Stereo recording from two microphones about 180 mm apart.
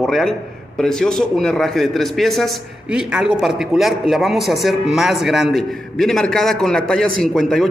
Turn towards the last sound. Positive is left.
turn(degrees=0)  # may be behind; listen again after turning